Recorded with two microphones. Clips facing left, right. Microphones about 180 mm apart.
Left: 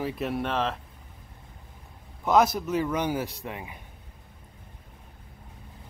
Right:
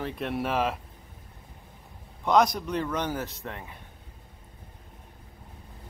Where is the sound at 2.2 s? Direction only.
5° left (ahead or behind).